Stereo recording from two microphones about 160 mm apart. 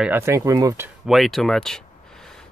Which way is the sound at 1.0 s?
Centre (ahead or behind).